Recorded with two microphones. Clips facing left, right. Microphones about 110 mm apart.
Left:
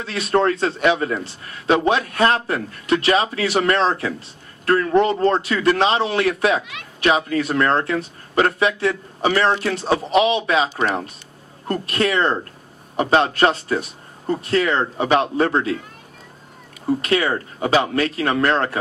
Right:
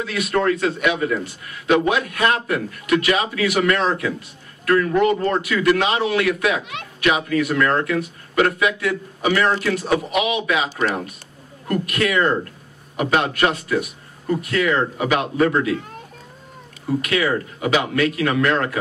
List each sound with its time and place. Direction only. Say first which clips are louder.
0.0 s a man's voice: left 2 dB; 30° left (ahead or behind)
17.0 s a man's voice: right 1 dB; 30° left (ahead or behind)